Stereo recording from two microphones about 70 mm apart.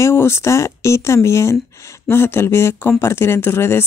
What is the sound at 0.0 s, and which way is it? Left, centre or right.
Speech, left.